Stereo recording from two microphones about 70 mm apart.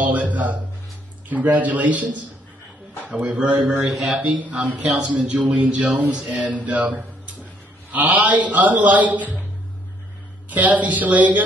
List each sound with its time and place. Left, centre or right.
0.0 s a sound: right
1.3 s a man's voice: right
3.1 s a man's voice: centre
3.8 s speech: centre
4.2 s a man's voice: right
10.5 s a man's voice: right